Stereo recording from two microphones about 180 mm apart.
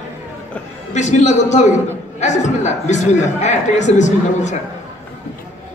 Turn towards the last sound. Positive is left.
turn(degrees=40)  # may be behind; listen again after turning